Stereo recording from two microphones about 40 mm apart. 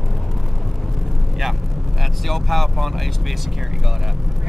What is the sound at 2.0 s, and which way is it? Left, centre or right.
Speech, centre.